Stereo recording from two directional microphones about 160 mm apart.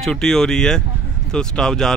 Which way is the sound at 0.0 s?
5° left (ahead or behind).